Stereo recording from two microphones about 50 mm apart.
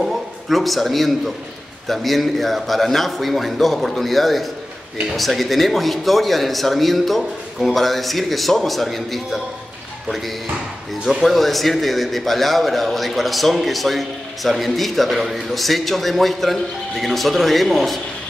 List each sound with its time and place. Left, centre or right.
0.0 s a man's voice: centre